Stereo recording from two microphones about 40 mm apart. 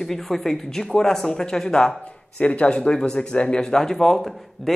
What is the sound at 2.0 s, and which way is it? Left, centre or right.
A woman's voice, left.